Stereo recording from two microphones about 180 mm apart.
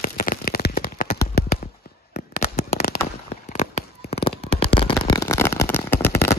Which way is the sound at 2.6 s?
55° left (ahead or behind).